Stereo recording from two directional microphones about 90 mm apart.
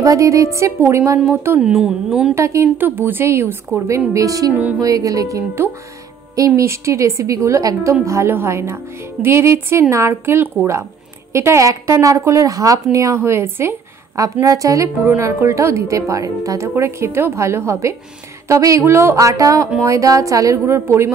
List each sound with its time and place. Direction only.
0.0 s speech: 40° right (ahead or behind)
1.6 s a woman's voice: 5° right (ahead or behind)
2.3 s speech: 30° right (ahead or behind)
4.1 s speech: 40° right (ahead or behind)
14.1 s speech: 40° right (ahead or behind)